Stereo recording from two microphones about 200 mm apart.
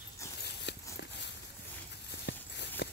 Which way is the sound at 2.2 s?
60° left (ahead or behind).